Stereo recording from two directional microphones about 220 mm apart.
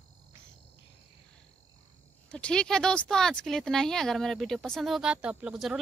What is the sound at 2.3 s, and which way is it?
Speech, 5° left (ahead or behind).